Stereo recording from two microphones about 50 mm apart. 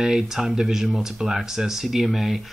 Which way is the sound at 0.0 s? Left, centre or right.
Centre.